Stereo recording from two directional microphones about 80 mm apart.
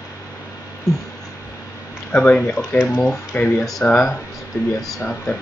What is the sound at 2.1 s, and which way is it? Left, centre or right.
Speech, centre.